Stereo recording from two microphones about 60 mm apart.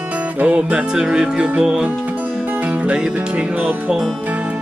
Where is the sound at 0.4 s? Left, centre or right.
Right.